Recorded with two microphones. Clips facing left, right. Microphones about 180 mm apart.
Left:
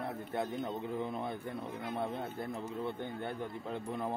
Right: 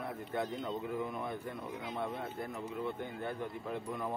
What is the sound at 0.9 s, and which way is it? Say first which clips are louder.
Speech: left 1 dB; 30° left (ahead or behind).